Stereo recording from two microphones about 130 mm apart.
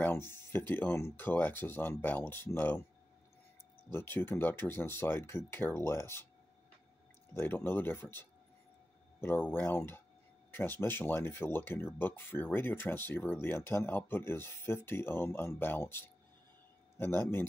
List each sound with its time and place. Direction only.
0.0 s speech: 15° left (ahead or behind)
3.9 s speech: 15° left (ahead or behind)
7.3 s speech: 15° left (ahead or behind)